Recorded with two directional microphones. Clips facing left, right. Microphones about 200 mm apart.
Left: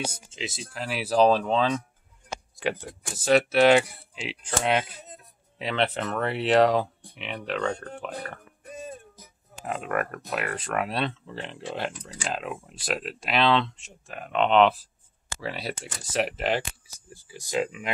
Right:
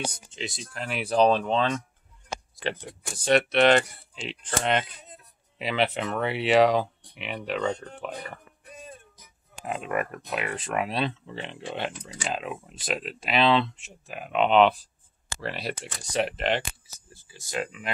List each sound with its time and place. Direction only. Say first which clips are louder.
0.0 s speech: even; 5° left (ahead or behind)
8.6 s music: left 6 dB; 45° left (ahead or behind)
9.7 s speech: even; centre (ahead or behind)
17.1 s speech: left 5 dB; 15° left (ahead or behind)